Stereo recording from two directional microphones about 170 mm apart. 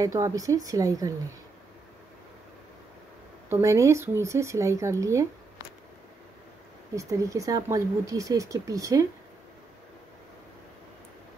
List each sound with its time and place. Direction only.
0.0 s speech: 20° right (ahead or behind)
3.4 s speech: 15° right (ahead or behind)
7.0 s speech: 20° right (ahead or behind)